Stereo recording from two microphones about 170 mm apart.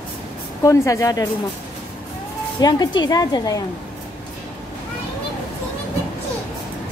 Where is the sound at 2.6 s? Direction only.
25° left (ahead or behind).